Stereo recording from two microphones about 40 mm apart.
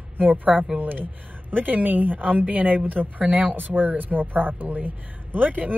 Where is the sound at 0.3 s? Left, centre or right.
Right.